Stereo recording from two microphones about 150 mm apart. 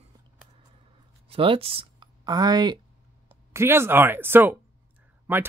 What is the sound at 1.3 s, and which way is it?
Speech, 40° right (ahead or behind).